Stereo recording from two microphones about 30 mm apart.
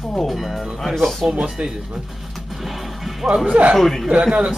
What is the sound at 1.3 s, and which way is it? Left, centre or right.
Speech, right.